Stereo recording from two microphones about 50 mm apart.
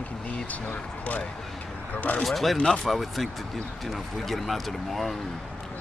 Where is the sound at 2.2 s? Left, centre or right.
Centre.